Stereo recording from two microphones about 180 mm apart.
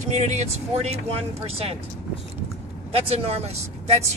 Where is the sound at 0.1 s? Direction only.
40° right (ahead or behind).